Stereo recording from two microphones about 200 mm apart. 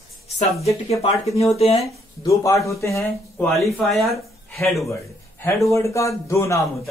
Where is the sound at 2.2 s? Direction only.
15° left (ahead or behind).